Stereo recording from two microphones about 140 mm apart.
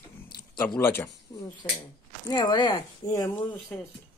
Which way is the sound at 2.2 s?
30° left (ahead or behind).